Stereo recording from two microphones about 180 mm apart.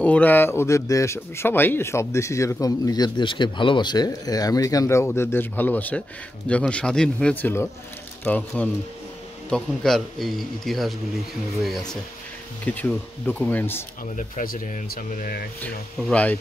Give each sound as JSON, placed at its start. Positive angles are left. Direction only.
{"t": 0.0, "sound": "a man's voice", "side_deg": 10}
{"t": 14.1, "sound": "speech", "side_deg": 50}
{"t": 15.6, "sound": "speech", "side_deg": 10}